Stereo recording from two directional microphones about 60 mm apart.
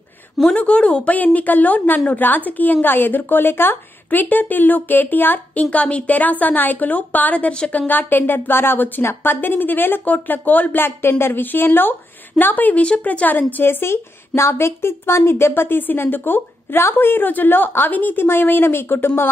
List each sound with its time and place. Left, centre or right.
0.6 s a woman's voice: left